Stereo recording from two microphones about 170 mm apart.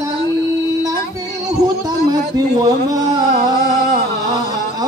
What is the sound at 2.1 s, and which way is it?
Speech, 20° right (ahead or behind).